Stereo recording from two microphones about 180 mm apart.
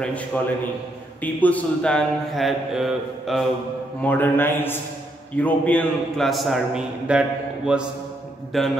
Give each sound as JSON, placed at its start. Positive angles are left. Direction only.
{"t": 0.0, "sound": "mantra", "side_deg": 5}
{"t": 1.2, "sound": "a man's voice", "side_deg": 10}
{"t": 4.0, "sound": "mantra", "side_deg": 10}
{"t": 5.3, "sound": "a man's voice", "side_deg": 10}